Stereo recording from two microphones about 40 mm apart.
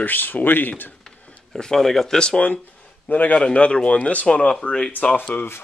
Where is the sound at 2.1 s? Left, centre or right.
Left.